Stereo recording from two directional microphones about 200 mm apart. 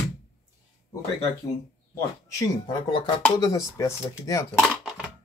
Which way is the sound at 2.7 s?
25° left (ahead or behind).